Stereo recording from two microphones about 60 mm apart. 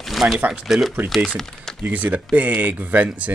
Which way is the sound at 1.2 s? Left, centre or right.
Centre.